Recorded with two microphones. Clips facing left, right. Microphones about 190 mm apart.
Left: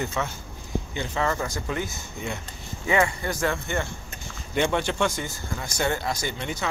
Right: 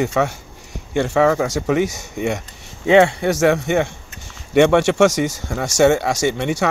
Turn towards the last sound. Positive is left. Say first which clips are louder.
# right 12 dB
turn(degrees=-75)  # may be behind; listen again after turning